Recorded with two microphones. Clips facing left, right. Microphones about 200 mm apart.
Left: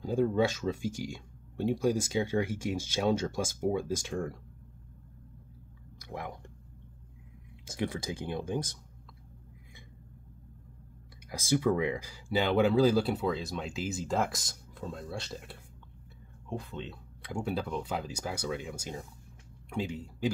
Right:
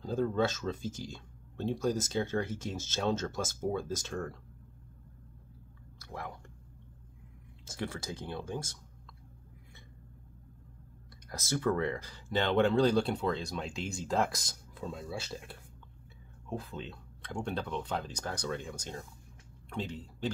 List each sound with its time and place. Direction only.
0.0 s speech: 10° left (ahead or behind)
5.9 s chewing: 15° left (ahead or behind)
7.6 s speech: 15° left (ahead or behind)
11.2 s speech: 10° left (ahead or behind)